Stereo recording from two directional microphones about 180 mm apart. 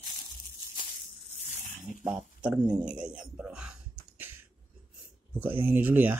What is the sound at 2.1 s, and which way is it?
Speech, 15° right (ahead or behind).